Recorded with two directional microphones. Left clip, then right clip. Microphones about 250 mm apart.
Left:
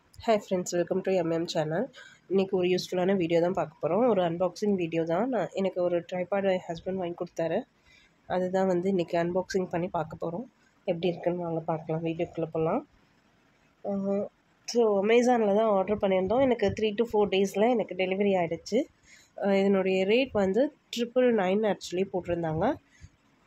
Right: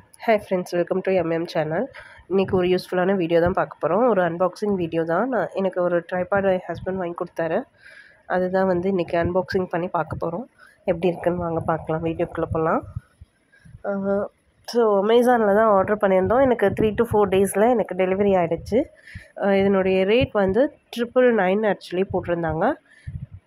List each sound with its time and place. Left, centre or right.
0.2 s speech: centre
13.8 s speech: centre